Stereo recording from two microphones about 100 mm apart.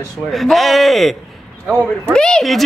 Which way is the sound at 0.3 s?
Centre (ahead or behind).